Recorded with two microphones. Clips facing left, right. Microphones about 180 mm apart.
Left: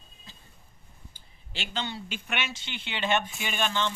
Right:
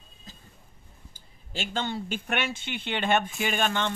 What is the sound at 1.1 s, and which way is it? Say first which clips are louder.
Speech: right 6 dB; 45° right (ahead or behind).